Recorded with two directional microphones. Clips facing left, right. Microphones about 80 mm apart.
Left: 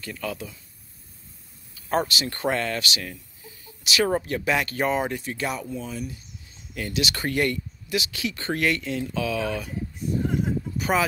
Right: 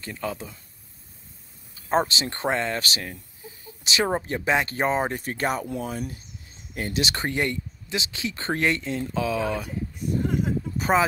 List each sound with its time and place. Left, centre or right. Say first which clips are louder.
0.0 s speech: right 1 dB; right
1.8 s speech: right 2 dB; right
5.7 s speech: right 2 dB; right
6.7 s speech: right 1 dB; right
10.8 s speech: right 2 dB; right